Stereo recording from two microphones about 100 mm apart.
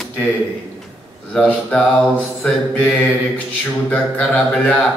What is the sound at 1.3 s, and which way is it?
Speech, 5° left (ahead or behind).